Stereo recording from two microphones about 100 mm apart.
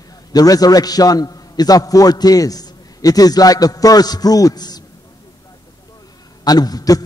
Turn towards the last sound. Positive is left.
turn(degrees=40)  # may be behind; listen again after turning